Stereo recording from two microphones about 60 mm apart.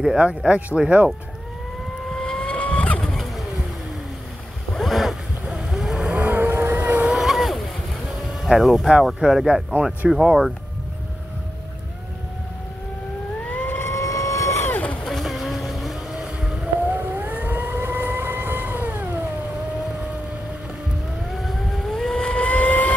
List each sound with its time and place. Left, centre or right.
0.5 s speech: right
2.1 s vehicle: centre
3.1 s vehicle: centre
4.7 s boat: centre
5.5 s boat: centre
6.1 s vehicle: right
7.1 s boat: centre
8.4 s speech: centre
13.5 s vehicle: left
13.9 s vehicle: left
15.0 s vehicle: centre
16.8 s siren: right
21.4 s vehicle: centre; by 22.9 s left